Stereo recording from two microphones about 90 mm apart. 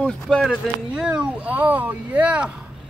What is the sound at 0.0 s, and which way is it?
Speech, 10° left (ahead or behind).